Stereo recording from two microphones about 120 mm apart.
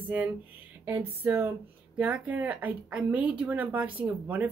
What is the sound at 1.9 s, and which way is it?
Speech, 15° right (ahead or behind).